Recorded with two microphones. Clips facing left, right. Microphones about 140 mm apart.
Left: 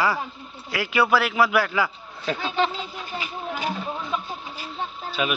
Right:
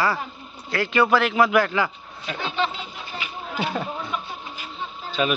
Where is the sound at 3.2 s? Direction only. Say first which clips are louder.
Left 1 dB; 40° left (ahead or behind).